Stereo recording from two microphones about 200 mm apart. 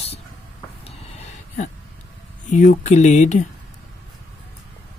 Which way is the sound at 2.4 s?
40° left (ahead or behind).